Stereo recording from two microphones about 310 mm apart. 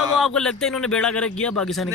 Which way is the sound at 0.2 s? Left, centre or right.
Centre.